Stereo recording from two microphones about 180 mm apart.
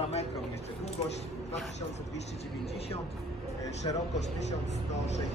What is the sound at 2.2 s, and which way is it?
A man's voice, 35° left (ahead or behind).